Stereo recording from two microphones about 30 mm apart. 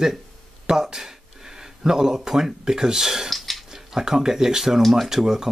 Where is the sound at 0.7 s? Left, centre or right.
Right.